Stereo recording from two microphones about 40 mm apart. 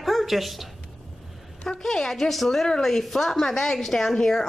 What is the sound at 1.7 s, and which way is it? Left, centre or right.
A woman's voice, centre.